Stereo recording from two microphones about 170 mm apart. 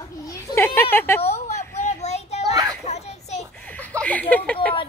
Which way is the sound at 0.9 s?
15° left (ahead or behind).